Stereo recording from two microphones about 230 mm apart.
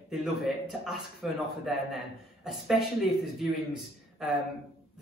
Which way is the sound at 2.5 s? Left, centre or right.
Centre.